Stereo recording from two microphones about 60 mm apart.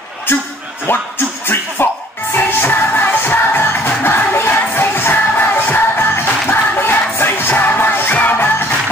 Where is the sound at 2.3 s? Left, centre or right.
Left.